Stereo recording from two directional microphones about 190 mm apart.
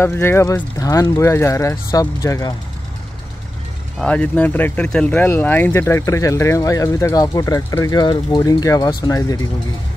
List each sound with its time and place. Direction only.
0.0 s speech: 10° left (ahead or behind)
4.0 s speech: 5° left (ahead or behind)